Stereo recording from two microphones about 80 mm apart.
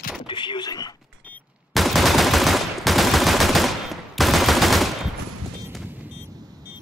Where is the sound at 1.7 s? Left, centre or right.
Centre.